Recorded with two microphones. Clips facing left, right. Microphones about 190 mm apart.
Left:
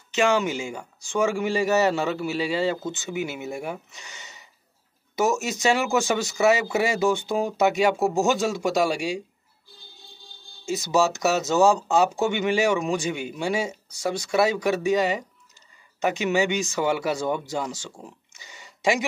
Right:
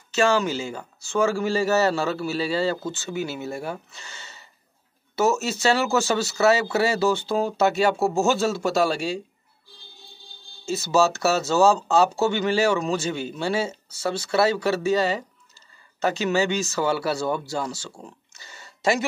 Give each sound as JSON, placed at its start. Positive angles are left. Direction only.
{"t": 0.1, "sound": "speech", "side_deg": 15}
{"t": 10.6, "sound": "speech", "side_deg": 15}